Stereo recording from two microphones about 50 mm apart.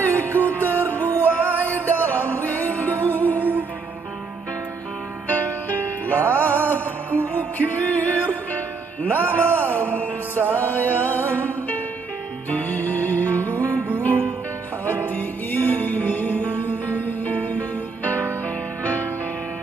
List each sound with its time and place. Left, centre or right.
0.0 s music: left
5.3 s music: left
14.9 s music: left